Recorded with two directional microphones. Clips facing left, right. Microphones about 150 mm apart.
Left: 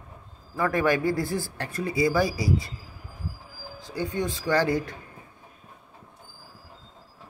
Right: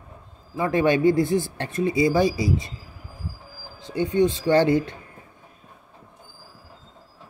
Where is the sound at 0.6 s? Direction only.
20° right (ahead or behind).